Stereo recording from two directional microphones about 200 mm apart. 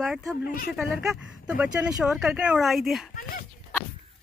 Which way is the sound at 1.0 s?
5° right (ahead or behind).